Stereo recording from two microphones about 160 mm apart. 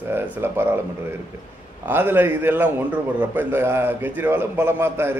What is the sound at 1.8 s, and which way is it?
A man's voice, 15° right (ahead or behind).